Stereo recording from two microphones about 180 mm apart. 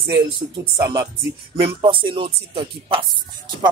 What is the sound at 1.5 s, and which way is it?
Speech, 30° right (ahead or behind).